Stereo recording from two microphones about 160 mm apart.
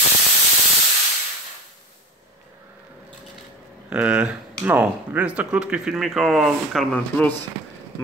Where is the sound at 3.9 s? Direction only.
5° right (ahead or behind); by 7.3 s 10° left (ahead or behind).